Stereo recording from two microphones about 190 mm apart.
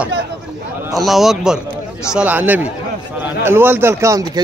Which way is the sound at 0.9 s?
Centre (ahead or behind).